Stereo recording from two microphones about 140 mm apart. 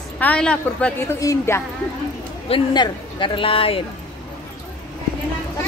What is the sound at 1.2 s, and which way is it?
Speech, 25° left (ahead or behind).